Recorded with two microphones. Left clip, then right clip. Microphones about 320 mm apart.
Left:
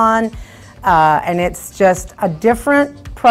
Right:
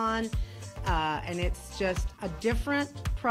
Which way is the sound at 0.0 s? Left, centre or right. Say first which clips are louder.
Left 17 dB; centre.